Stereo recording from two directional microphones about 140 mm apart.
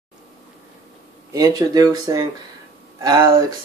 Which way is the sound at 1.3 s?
25° right (ahead or behind).